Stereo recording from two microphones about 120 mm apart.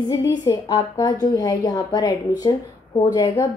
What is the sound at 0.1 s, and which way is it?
A woman's voice, 30° left (ahead or behind).